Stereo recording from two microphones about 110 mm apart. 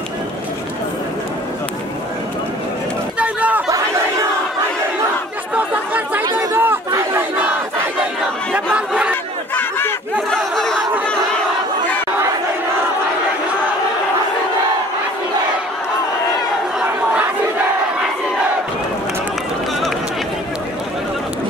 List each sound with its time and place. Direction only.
3.2 s a sound: 10° right (ahead or behind)
5.5 s chatter: 15° right (ahead or behind)
7.2 s battle cry: 10° right (ahead or behind)
8.7 s chatter: 10° right (ahead or behind)
9.6 s a sound: 20° left (ahead or behind)
10.3 s chatter: 5° left (ahead or behind)
16.8 s crowd: 10° right (ahead or behind)